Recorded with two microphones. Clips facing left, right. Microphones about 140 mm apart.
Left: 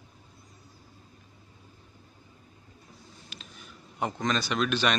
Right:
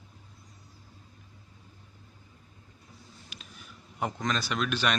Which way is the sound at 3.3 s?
10° right (ahead or behind).